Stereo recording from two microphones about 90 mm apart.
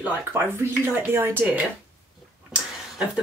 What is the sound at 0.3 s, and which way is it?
Speech, 30° right (ahead or behind).